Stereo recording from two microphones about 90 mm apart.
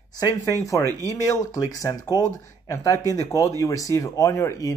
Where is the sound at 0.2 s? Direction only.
40° left (ahead or behind).